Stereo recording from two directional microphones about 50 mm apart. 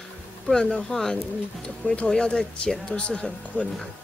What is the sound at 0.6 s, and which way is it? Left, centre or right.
Speech, left.